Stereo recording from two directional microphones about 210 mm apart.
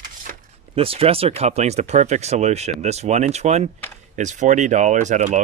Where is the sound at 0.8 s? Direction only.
25° right (ahead or behind).